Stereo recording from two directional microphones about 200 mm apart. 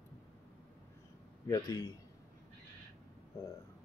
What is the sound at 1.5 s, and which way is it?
Speech, 20° left (ahead or behind).